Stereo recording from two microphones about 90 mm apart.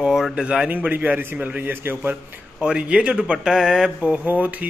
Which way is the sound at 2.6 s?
10° right (ahead or behind).